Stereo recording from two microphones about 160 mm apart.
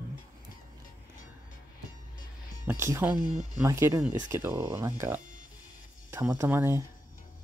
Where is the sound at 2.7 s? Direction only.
15° right (ahead or behind).